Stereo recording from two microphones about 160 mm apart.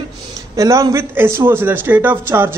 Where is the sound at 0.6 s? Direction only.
20° right (ahead or behind).